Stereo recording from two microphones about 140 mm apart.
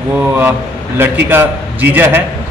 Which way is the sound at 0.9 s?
15° right (ahead or behind).